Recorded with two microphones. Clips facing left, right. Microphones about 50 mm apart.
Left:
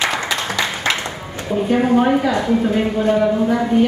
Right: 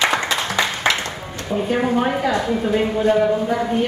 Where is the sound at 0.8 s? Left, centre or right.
Centre.